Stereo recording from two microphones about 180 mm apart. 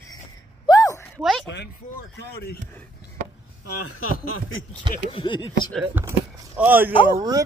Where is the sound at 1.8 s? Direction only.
50° left (ahead or behind).